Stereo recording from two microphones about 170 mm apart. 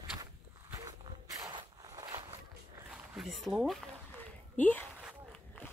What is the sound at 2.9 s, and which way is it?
Speech, centre (ahead or behind).